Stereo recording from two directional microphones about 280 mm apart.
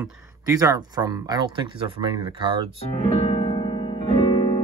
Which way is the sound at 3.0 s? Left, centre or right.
Left.